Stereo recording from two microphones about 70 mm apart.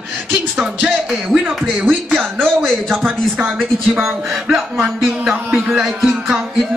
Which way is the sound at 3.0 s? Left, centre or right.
Right.